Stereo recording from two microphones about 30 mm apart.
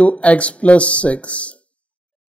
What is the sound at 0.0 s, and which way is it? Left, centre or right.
Speech, left.